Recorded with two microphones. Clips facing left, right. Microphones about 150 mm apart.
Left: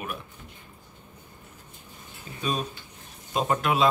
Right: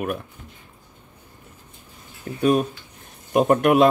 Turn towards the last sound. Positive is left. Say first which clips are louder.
# right 8 dB
turn(degrees=-55)  # may be behind; listen again after turning